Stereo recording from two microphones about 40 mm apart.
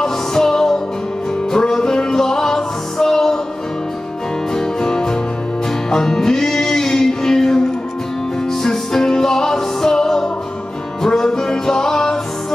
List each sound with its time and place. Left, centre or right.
0.0 s music: centre
4.6 s music: centre